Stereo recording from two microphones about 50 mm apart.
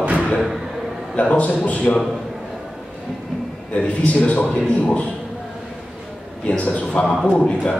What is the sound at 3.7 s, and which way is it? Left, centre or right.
A man's voice, left.